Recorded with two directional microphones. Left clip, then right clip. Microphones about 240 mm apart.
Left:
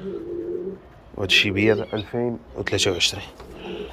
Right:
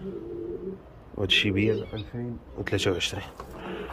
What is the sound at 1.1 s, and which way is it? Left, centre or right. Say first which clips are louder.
Speech: left 5 dB; centre.